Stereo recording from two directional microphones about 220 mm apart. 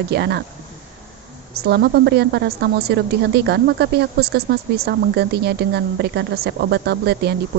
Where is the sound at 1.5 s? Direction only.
45° right (ahead or behind).